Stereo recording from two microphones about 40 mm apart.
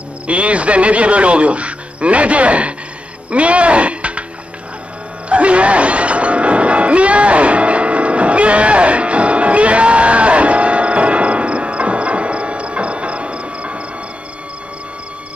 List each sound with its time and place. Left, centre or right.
0.3 s speech: right
5.3 s music: right